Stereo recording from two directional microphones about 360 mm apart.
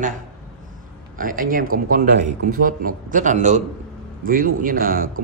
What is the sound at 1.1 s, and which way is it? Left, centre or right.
Speech, right.